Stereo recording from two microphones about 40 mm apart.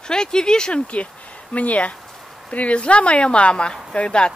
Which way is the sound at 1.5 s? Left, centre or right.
Left.